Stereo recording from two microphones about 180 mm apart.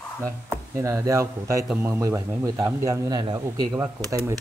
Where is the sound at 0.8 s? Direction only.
15° right (ahead or behind).